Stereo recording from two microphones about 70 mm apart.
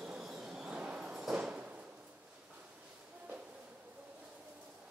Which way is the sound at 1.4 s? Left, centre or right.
Centre.